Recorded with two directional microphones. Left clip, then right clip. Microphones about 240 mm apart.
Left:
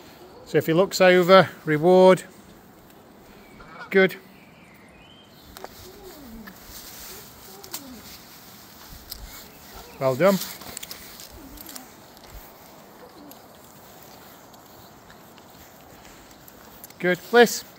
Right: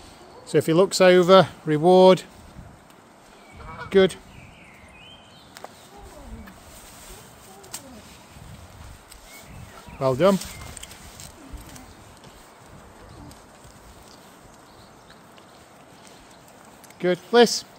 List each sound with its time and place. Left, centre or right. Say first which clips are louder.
0.5 s speech: right 1 dB; right
3.9 s speech: right 1 dB; centre
9.9 s speech: even; right
17.0 s speech: even; centre